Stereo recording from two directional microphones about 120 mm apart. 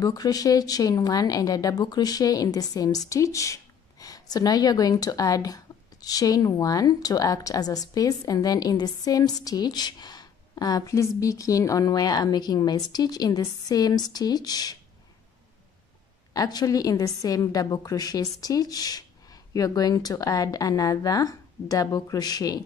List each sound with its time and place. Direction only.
0.0 s a woman's voice: 30° left (ahead or behind)
16.3 s a woman's voice: 30° left (ahead or behind)